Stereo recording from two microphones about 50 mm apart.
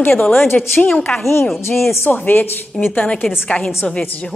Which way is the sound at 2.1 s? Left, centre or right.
Left.